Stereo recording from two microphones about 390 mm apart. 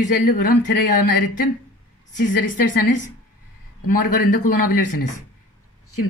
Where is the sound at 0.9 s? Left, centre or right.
Left.